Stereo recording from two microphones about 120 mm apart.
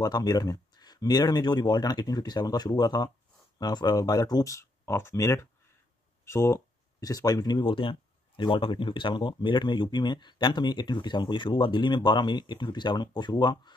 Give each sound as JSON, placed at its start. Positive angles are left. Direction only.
{"t": 0.0, "sound": "speech", "side_deg": 35}